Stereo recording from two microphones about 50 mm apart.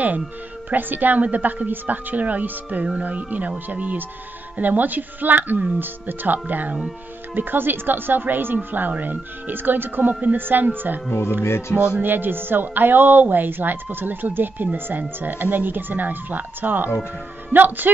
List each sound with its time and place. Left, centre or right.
0.7 s a woman's voice: right
11.1 s speech: left
11.7 s a woman's voice: right
12.1 s a woman's voice: right